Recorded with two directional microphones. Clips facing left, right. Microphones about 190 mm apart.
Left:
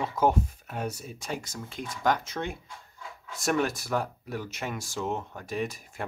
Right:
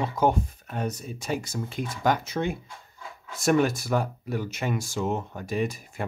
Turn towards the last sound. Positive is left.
turn(degrees=0)  # may be behind; listen again after turning